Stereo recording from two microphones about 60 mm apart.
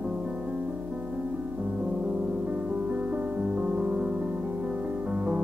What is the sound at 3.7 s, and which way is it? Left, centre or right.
Music, right.